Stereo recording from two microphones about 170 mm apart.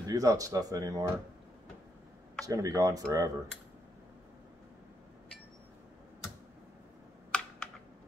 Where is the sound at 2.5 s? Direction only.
20° right (ahead or behind).